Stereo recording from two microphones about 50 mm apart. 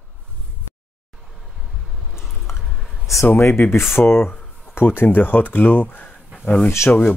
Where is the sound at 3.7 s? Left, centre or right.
Left.